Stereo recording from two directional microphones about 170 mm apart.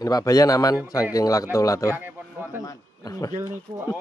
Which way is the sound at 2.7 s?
20° left (ahead or behind).